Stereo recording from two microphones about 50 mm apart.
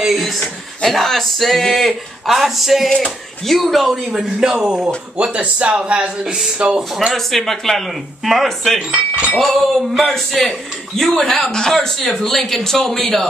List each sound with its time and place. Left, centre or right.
0.0 s a sound: centre
0.8 s speech: centre
2.9 s a man's voice: centre
3.5 s a man's voice: centre
4.8 s speech: right
5.8 s a man's voice: centre
7.2 s speech: centre
8.9 s speech: right
9.3 s a man's voice: centre